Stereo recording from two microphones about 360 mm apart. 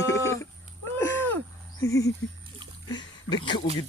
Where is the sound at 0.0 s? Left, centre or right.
Centre.